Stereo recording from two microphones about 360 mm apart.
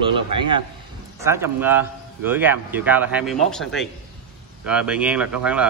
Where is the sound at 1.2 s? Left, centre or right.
Centre.